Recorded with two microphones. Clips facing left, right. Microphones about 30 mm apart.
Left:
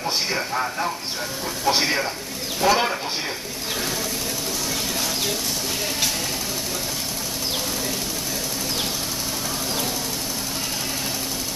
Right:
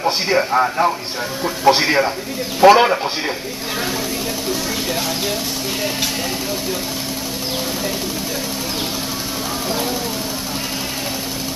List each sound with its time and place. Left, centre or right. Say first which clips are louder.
0.0 s a man's voice: right 7 dB; right